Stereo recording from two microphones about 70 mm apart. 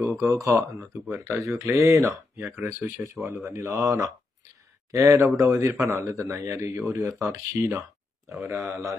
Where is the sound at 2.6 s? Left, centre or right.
Right.